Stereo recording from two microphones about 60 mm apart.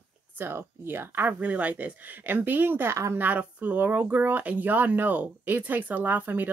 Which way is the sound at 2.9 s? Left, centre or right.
Right.